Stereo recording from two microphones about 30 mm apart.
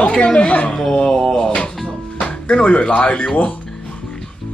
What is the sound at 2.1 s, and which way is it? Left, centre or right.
Music, left.